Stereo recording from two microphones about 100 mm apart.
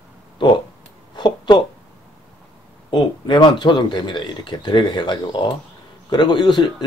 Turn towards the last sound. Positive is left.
turn(degrees=50)  # may be behind; listen again after turning